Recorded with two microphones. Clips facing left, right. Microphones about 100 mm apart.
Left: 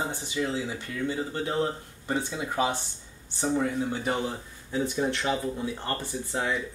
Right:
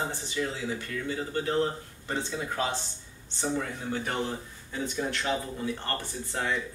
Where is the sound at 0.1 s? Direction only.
15° left (ahead or behind).